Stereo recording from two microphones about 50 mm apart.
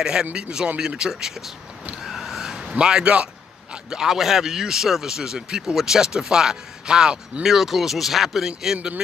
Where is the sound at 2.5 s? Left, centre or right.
Centre.